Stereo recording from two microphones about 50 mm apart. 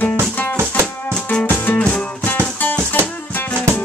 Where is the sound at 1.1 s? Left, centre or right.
Centre.